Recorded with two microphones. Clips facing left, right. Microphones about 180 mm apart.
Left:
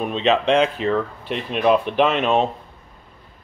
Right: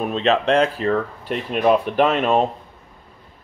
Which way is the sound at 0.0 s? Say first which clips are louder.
Even; centre (ahead or behind).